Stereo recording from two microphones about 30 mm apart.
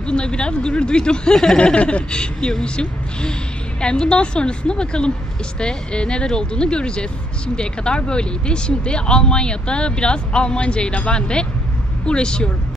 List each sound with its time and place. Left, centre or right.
0.0 s speech: left
1.6 s a sound: left
2.0 s a woman's voice: left